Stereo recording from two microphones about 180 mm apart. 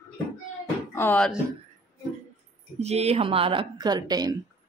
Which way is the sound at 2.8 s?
35° right (ahead or behind).